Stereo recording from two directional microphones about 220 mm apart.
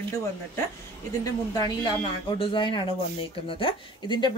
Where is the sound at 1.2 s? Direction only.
20° left (ahead or behind).